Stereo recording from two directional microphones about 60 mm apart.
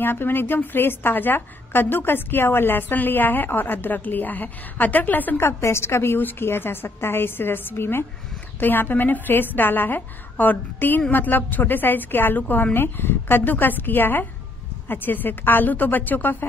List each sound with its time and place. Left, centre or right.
0.0 s a woman's voice: left
5.4 s a woman's voice: left